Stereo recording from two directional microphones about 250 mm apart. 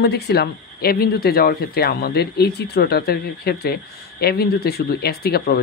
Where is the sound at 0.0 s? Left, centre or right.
Left.